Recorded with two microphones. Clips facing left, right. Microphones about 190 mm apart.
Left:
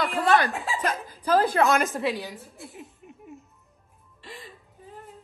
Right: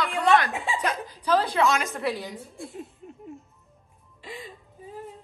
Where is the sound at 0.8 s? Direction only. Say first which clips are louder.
Even; 50° left (ahead or behind).